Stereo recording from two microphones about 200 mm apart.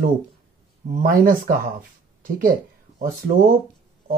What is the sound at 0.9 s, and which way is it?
Speech, 45° right (ahead or behind).